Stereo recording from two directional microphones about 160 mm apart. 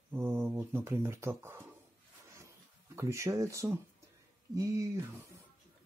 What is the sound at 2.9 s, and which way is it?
Speech, 20° right (ahead or behind).